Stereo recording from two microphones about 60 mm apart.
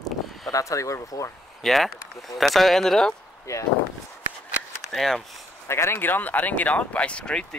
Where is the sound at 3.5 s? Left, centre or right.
Left.